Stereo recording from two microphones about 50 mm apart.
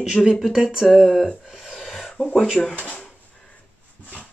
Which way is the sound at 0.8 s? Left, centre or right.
Centre.